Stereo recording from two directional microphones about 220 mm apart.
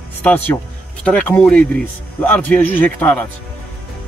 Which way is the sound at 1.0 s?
5° left (ahead or behind).